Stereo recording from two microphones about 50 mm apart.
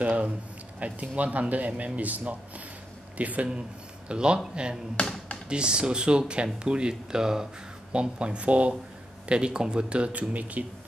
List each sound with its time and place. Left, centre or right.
0.0 s speech: right
5.0 s speech: left
5.5 s speech: centre